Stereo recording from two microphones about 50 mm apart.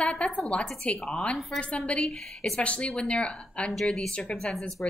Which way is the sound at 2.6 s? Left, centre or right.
Left.